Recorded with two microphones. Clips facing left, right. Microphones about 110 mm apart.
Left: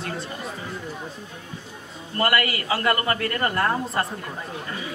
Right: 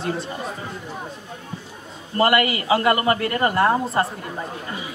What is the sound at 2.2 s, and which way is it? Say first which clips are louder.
A woman's voice: right 5 dB; 20° right (ahead or behind).